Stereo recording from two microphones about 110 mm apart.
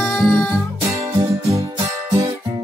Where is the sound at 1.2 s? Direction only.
30° right (ahead or behind).